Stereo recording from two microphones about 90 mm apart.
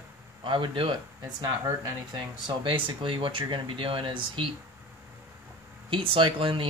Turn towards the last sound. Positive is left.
turn(degrees=-75)  # may be behind; listen again after turning